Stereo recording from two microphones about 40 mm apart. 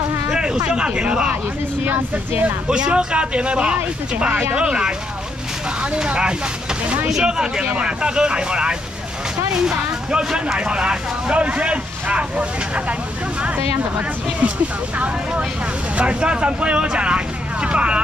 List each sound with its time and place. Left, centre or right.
0.3 s speech: right
1.9 s speech: right
2.7 s speech: right
7.6 s speech: right
16.0 s speech: right